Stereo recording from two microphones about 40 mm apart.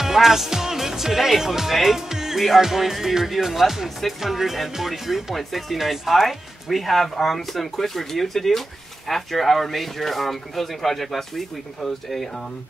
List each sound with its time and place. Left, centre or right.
0.0 s speech: centre